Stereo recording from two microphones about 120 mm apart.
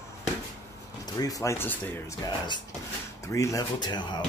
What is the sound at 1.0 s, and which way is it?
Speech, 30° left (ahead or behind).